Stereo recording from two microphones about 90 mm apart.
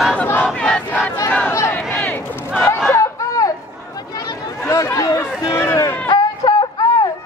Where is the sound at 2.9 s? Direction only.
35° left (ahead or behind).